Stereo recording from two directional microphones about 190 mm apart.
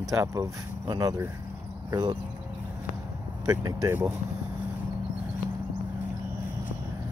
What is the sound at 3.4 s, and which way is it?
Speech, 15° right (ahead or behind).